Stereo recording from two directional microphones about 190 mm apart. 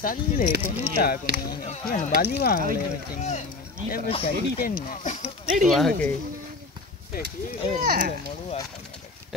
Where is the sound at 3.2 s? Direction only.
35° left (ahead or behind).